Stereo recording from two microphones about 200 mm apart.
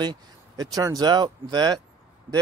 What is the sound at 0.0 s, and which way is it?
Speech, 20° right (ahead or behind).